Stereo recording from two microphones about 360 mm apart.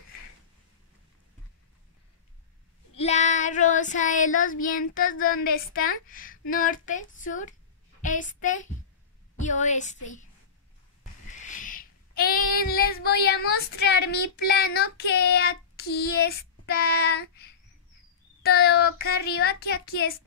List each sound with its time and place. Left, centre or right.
2.9 s child singing: centre
8.0 s a woman's voice: left
9.4 s child singing: centre
11.3 s child singing: left
18.4 s child singing: left